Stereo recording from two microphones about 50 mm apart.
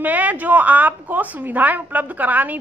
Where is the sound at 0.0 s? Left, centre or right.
Right.